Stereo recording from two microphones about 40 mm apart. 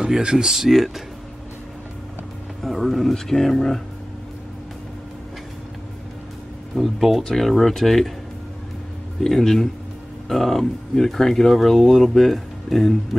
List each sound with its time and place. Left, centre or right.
0.0 s speech: right
0.5 s speech: centre
2.6 s speech: centre
6.7 s speech: centre
9.2 s speech: centre